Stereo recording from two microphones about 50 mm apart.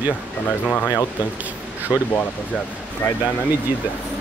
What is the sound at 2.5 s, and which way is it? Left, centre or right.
Speech, right.